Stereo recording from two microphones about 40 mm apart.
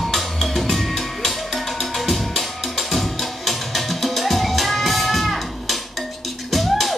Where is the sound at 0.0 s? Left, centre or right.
Centre.